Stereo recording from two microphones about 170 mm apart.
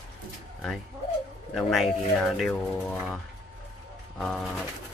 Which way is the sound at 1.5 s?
5° left (ahead or behind).